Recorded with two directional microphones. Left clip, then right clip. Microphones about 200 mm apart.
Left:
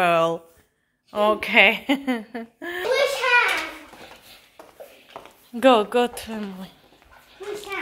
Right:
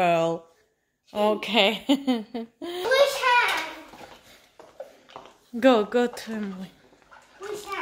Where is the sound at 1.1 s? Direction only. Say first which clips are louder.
Left 4 dB; 15° right (ahead or behind).